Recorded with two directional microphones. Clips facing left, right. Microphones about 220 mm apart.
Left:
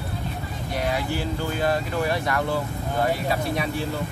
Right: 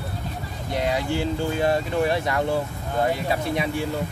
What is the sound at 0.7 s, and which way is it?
Speech, 20° right (ahead or behind).